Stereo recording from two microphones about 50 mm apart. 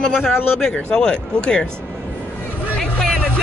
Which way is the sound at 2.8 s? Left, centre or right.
Centre.